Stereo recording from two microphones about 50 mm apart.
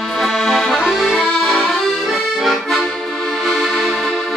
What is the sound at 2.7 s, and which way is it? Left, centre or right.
Accordion, centre.